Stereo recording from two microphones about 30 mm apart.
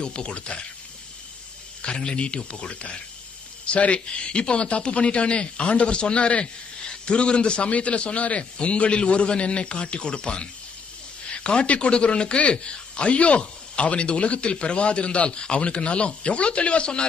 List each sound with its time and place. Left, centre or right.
0.0 s speech: left
2.0 s a man's voice: left